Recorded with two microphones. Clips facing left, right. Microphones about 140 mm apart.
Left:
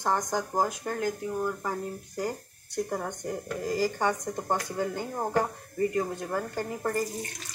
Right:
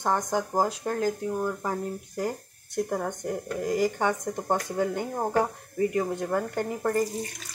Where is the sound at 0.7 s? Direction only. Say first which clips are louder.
Right 3 dB; 30° right (ahead or behind).